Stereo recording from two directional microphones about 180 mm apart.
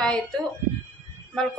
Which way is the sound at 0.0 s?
5° left (ahead or behind).